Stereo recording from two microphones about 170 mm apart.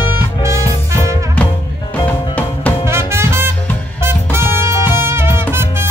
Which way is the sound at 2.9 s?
15° right (ahead or behind).